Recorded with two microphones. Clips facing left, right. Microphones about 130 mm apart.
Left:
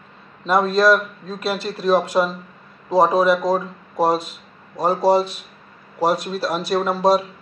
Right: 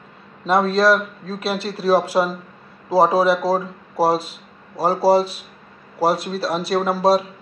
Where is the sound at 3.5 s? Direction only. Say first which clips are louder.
Even; 30° right (ahead or behind).